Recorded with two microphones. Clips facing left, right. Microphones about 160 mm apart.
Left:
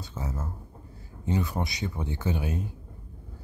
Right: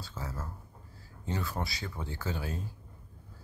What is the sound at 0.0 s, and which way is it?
Speech, 20° left (ahead or behind).